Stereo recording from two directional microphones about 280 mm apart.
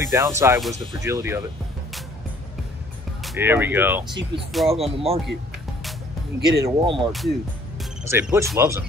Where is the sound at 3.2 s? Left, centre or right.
Centre.